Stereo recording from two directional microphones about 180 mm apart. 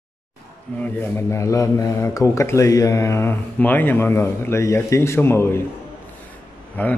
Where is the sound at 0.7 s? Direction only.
10° left (ahead or behind).